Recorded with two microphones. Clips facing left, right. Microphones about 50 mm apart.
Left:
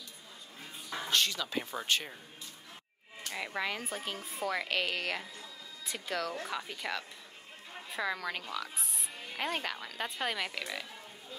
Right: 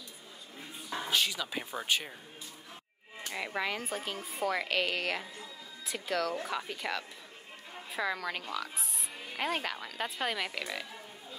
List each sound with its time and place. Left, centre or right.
0.9 s speech: centre
3.3 s speech: centre